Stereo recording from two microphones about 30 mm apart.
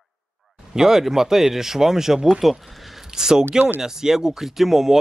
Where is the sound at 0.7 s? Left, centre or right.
Centre.